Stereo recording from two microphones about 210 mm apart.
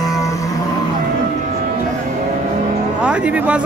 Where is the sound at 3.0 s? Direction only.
5° right (ahead or behind).